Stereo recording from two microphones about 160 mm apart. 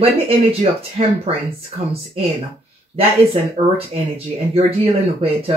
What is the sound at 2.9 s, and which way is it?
Speech, 35° right (ahead or behind).